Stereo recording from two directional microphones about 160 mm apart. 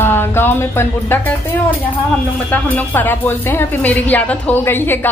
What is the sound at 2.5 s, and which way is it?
A woman's voice, 10° left (ahead or behind).